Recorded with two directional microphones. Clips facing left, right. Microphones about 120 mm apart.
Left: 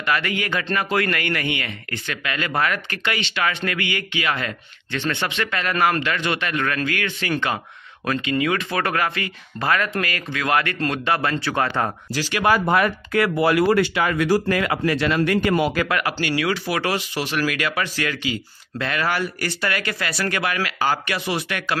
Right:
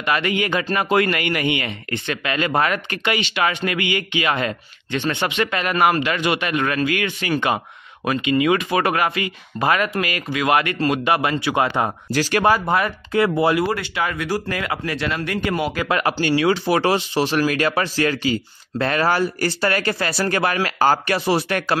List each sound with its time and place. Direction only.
0.0 s speech: 20° right (ahead or behind)
12.1 s speech: 45° right (ahead or behind)
12.4 s speech: 25° right (ahead or behind)
15.7 s speech: 25° right (ahead or behind)